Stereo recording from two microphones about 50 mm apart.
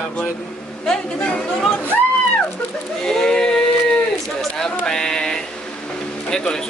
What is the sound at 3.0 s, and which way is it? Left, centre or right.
Speech, centre.